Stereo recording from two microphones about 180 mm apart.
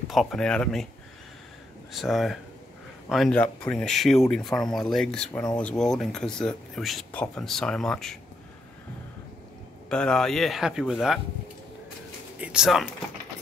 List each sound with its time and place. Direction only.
0.1 s speech: centre (ahead or behind)
1.9 s speech: centre (ahead or behind)
9.8 s speech: 5° left (ahead or behind)
12.4 s speech: 5° right (ahead or behind)